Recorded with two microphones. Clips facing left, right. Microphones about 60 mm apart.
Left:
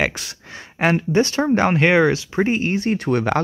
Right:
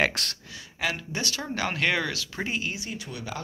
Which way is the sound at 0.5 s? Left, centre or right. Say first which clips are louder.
Left 13 dB; left.